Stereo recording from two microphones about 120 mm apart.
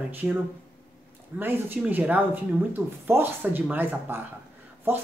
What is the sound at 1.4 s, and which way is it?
Speech, 15° right (ahead or behind).